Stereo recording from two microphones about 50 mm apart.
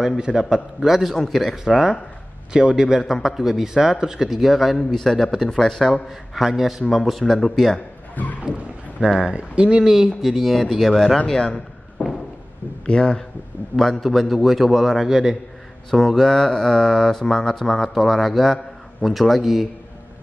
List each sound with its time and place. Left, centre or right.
0.3 s speech: centre
6.0 s speech: centre
7.0 s speech: centre
8.2 s boat: left
9.2 s speech: centre
11.1 s speech: centre
12.8 s speech: centre
13.7 s speech: centre
15.9 s speech: centre